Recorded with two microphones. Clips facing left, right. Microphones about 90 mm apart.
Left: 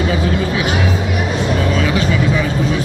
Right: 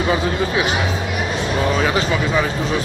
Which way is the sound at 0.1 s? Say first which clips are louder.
Left 1 dB; 30° right (ahead or behind).